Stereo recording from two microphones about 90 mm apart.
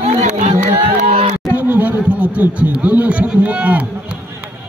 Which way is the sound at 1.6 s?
20° right (ahead or behind).